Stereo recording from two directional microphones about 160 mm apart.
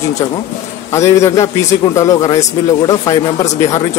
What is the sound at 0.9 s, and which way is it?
Speech, 20° left (ahead or behind).